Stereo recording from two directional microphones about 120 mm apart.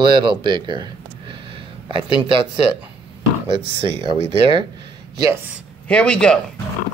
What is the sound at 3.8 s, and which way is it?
Speech, 45° right (ahead or behind).